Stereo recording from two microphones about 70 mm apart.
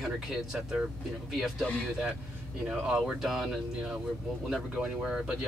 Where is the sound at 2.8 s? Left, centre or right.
Centre.